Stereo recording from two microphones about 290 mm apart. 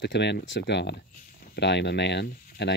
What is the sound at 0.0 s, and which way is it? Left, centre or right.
Speech, left.